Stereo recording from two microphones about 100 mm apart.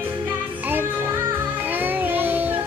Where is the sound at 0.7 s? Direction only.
25° right (ahead or behind).